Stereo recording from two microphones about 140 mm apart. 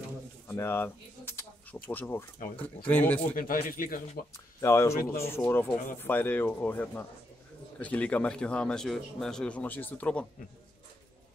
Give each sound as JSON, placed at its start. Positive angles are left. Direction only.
{"t": 0.5, "sound": "a sound", "side_deg": 15}
{"t": 1.9, "sound": "speech", "side_deg": 15}
{"t": 3.3, "sound": "speech", "side_deg": 90}
{"t": 4.6, "sound": "speech", "side_deg": 20}